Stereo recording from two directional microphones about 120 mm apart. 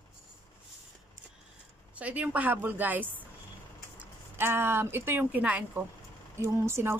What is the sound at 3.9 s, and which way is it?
Speech, 20° right (ahead or behind).